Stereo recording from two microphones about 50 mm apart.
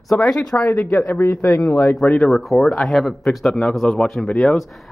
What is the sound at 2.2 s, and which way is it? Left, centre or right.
A man's voice, centre.